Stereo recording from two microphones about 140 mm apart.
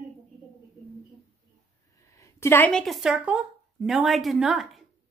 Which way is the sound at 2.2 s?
20° left (ahead or behind).